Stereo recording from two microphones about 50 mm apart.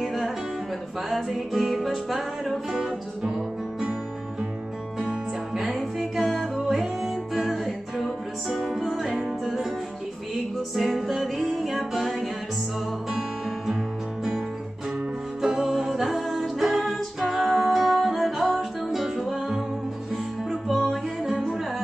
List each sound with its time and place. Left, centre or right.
0.0 s music: centre
5.6 s music: centre
10.8 s music: centre
15.4 s music: centre
20.6 s music: centre